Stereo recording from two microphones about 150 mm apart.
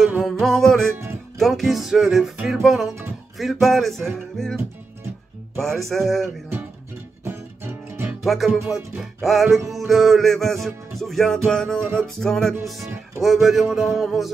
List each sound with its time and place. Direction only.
0.0 s music: centre (ahead or behind)
5.6 s music: centre (ahead or behind)
7.9 s music: 15° right (ahead or behind)
8.2 s music: centre (ahead or behind)